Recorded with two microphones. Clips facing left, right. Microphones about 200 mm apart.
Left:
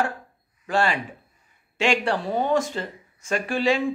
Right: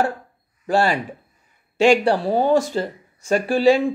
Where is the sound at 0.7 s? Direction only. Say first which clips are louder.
Right 4 dB; 35° right (ahead or behind).